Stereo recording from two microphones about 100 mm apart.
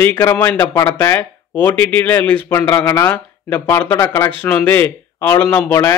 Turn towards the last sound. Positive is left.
turn(degrees=20)  # may be behind; listen again after turning